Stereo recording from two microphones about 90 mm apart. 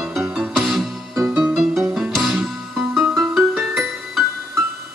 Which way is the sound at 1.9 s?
Centre (ahead or behind).